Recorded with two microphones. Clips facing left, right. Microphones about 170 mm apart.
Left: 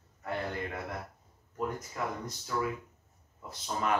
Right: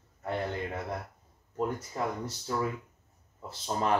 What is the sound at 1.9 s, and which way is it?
Speech, 30° right (ahead or behind).